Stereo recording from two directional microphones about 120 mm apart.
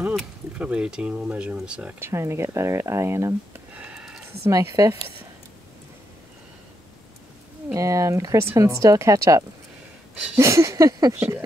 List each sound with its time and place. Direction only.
0.1 s speech: 10° right (ahead or behind)
2.0 s speech: 20° right (ahead or behind)
3.8 s a sound: 10° right (ahead or behind)
4.5 s speech: 30° right (ahead or behind)
7.7 s speech: 25° right (ahead or behind)
11.1 s speech: 15° right (ahead or behind)